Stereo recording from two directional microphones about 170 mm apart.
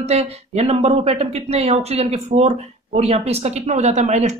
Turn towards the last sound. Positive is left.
turn(degrees=-45)  # may be behind; listen again after turning